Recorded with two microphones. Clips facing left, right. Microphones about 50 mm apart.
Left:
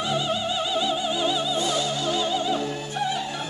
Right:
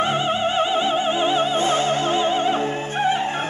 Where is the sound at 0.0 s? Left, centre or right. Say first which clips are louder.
Right 5 dB; right.